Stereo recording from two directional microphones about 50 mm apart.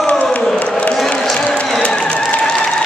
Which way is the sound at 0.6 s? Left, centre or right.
Left.